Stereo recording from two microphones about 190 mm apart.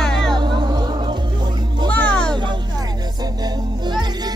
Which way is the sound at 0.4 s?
25° right (ahead or behind).